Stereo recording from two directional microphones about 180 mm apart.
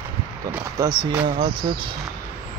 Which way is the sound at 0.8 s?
25° right (ahead or behind).